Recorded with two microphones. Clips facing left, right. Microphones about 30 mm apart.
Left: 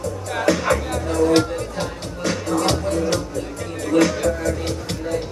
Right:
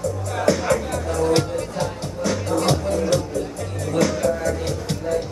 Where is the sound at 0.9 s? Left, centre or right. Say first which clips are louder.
Left 2 dB; centre.